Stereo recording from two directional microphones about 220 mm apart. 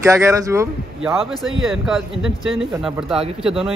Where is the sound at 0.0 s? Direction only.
15° right (ahead or behind).